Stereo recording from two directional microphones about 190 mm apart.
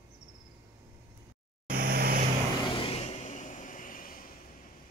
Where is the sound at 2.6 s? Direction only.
30° left (ahead or behind); by 4.3 s 45° left (ahead or behind).